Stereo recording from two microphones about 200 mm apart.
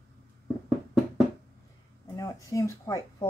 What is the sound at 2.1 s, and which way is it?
Speech, 15° left (ahead or behind).